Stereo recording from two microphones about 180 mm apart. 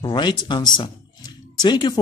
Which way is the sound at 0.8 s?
25° left (ahead or behind).